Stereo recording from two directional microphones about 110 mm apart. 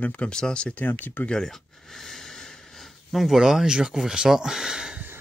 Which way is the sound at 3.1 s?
Centre (ahead or behind).